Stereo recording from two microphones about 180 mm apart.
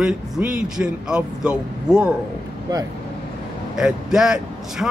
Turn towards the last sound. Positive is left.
turn(degrees=-5)  # may be behind; listen again after turning